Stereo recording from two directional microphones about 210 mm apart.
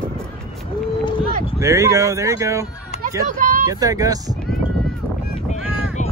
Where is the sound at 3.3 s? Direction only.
40° right (ahead or behind).